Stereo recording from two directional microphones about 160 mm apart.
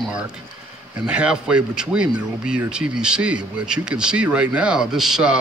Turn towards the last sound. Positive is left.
turn(degrees=-5)  # may be behind; listen again after turning